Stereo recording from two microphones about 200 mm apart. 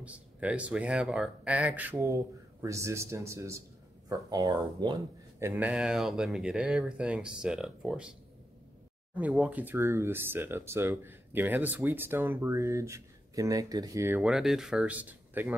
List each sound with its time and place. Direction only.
0.0 s speech: 5° right (ahead or behind)
5.5 s speech: 5° right (ahead or behind)